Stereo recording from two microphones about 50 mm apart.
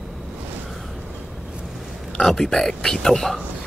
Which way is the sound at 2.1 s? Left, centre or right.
Centre.